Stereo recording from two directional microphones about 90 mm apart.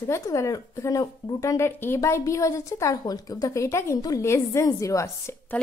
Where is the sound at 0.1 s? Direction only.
35° left (ahead or behind).